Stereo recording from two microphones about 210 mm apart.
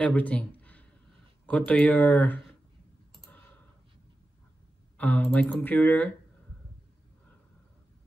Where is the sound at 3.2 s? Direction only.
10° left (ahead or behind).